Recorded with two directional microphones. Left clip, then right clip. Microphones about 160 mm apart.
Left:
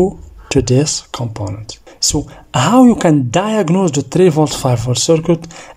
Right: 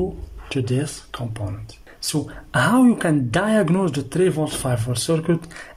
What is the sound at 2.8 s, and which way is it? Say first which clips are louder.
Speech: left 8 dB; 20° left (ahead or behind).